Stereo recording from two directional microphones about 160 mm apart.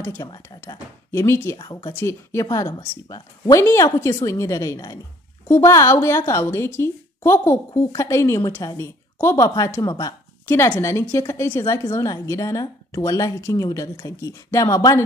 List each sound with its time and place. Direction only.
0.0 s a woman's voice: 20° left (ahead or behind)
1.6 s speech: 25° left (ahead or behind)
2.0 s a woman's voice: 15° left (ahead or behind)